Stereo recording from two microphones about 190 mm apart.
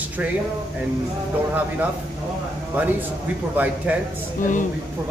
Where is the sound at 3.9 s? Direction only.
10° right (ahead or behind).